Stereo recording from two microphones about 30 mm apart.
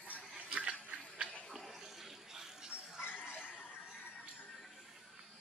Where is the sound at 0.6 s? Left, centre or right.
Right.